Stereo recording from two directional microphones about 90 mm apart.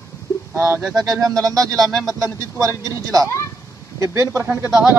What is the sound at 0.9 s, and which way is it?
Speech, 40° right (ahead or behind).